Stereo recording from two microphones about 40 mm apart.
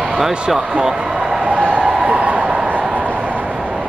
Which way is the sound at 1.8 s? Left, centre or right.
Right.